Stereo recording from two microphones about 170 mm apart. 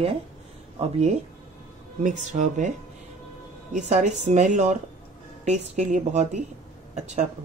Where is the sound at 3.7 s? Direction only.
45° right (ahead or behind).